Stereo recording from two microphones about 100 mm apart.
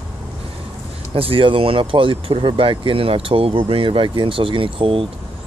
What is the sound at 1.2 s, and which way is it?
Speech, 65° right (ahead or behind).